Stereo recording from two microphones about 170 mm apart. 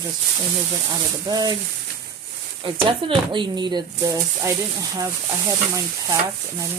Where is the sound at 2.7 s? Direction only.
30° right (ahead or behind).